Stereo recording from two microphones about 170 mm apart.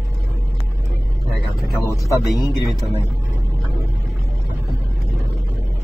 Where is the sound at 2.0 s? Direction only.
20° left (ahead or behind).